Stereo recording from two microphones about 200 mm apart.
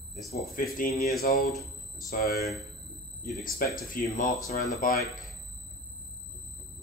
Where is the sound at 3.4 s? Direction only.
45° left (ahead or behind).